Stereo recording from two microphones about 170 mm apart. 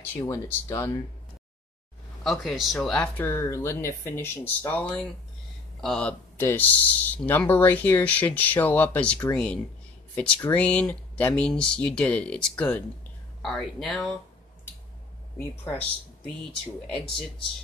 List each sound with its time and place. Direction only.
0.1 s speech: 20° left (ahead or behind)
2.2 s speech: centre (ahead or behind)
15.3 s speech: 10° left (ahead or behind)